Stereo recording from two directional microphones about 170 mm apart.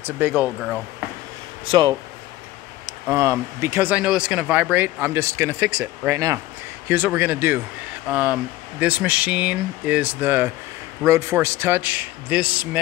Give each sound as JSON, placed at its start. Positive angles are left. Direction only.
{"t": 0.0, "sound": "speech", "side_deg": -10}
{"t": 1.7, "sound": "speech", "side_deg": -30}
{"t": 3.1, "sound": "speech", "side_deg": -15}